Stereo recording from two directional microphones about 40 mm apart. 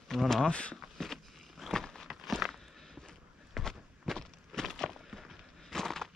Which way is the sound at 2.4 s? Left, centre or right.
Centre.